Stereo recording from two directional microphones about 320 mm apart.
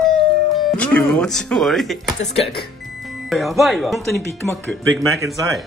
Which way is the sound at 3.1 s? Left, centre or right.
Centre.